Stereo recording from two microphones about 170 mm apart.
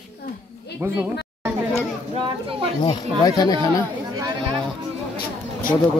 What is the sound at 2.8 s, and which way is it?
Speech, 25° left (ahead or behind).